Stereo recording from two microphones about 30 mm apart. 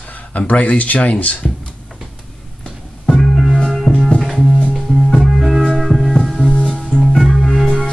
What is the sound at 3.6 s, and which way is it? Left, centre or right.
Music, centre.